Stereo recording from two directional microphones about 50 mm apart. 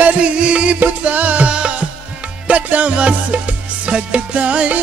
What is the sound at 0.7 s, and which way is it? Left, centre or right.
Music, right.